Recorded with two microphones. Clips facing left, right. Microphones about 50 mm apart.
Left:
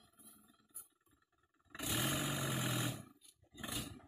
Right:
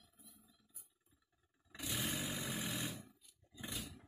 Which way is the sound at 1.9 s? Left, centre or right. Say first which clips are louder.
Left 3 dB; left.